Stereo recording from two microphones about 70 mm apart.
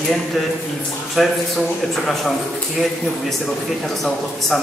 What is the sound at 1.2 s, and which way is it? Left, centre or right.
Speech, centre.